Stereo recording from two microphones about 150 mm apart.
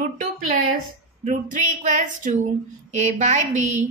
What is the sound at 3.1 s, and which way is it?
Speech, 55° right (ahead or behind).